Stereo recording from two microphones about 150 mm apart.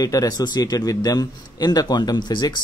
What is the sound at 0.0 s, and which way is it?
Speech, 25° left (ahead or behind).